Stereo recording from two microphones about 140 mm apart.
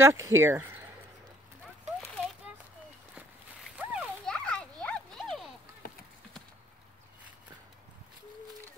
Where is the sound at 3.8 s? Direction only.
15° right (ahead or behind).